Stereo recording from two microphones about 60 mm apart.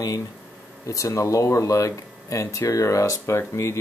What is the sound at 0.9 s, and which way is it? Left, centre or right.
Speech, left.